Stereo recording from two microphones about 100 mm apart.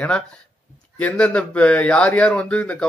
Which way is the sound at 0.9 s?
15° left (ahead or behind).